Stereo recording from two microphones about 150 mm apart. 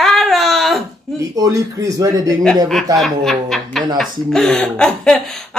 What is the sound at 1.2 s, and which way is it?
A man's voice, 20° right (ahead or behind).